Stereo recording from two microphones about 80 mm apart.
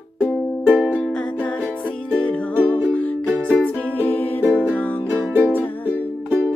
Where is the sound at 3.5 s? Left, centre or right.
Left.